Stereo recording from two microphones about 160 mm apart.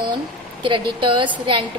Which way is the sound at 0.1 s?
30° right (ahead or behind).